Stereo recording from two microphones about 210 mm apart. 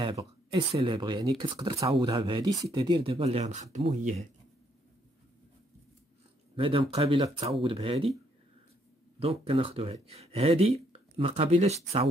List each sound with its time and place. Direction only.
0.0 s speech: 25° right (ahead or behind)
6.5 s speech: 25° right (ahead or behind)
9.2 s speech: 30° right (ahead or behind)